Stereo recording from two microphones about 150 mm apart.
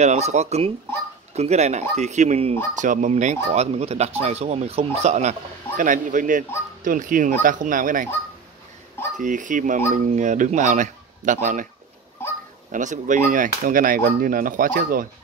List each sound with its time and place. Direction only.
0.0 s speech: 50° right (ahead or behind)
5.8 s speech: 60° right (ahead or behind)
9.1 s speech: 55° right (ahead or behind)
12.7 s speech: 60° right (ahead or behind)